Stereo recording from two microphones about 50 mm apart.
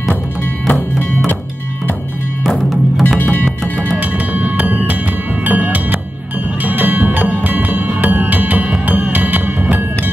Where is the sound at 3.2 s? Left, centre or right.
Left.